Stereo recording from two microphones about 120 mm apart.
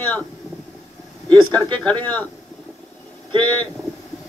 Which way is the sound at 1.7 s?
15° left (ahead or behind).